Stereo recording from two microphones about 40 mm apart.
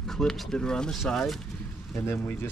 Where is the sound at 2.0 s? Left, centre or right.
Left.